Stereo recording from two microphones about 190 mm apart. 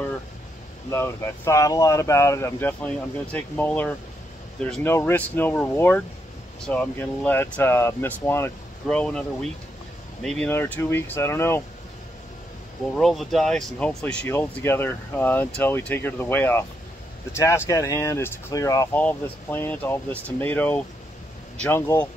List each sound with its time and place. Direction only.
0.8 s speech: 15° left (ahead or behind)
4.8 s speech: 10° left (ahead or behind)
12.9 s speech: centre (ahead or behind)